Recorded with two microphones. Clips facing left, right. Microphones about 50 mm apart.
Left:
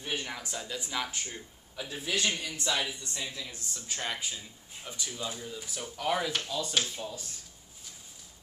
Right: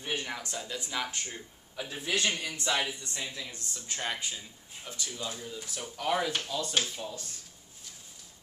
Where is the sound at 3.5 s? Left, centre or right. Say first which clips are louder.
Even; centre.